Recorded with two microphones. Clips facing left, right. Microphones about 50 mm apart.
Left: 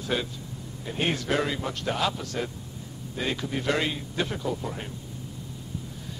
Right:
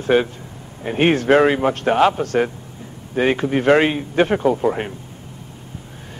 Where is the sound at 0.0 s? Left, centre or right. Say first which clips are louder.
Right 12 dB; right.